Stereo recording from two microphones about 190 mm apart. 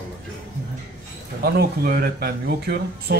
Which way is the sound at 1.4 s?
55° right (ahead or behind).